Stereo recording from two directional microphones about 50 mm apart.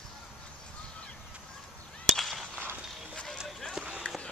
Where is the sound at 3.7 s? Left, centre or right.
Centre.